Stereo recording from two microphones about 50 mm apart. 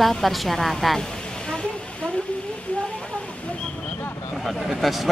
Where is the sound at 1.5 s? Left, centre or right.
Left.